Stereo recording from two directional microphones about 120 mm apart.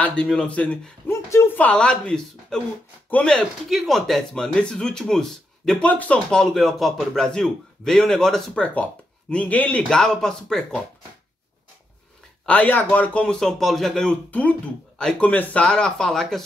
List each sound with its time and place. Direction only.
0.0 s a man's voice: 10° left (ahead or behind)
12.4 s a man's voice: 15° left (ahead or behind)